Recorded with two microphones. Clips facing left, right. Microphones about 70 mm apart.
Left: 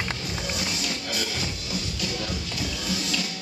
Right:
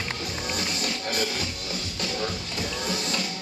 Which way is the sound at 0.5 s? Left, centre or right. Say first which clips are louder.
Right 1 dB; right.